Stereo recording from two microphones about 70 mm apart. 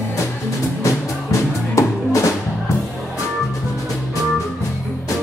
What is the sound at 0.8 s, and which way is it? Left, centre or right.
Music, left.